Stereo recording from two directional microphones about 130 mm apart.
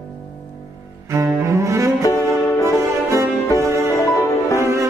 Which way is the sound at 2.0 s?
25° left (ahead or behind).